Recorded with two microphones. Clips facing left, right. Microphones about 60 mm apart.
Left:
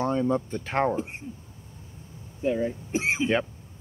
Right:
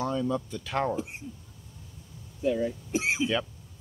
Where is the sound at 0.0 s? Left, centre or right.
Left.